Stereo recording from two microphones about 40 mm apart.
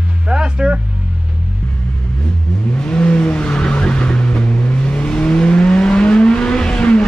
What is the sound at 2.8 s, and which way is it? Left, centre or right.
Vehicle, left.